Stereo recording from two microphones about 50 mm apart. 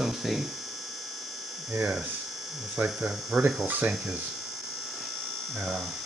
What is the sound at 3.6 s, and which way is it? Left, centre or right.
Speech, right.